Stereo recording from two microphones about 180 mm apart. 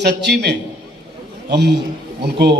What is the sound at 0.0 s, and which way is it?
A man's voice, 70° right (ahead or behind).